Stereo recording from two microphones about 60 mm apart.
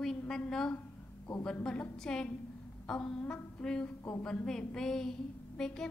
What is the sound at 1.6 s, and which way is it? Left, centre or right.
A woman's voice, left.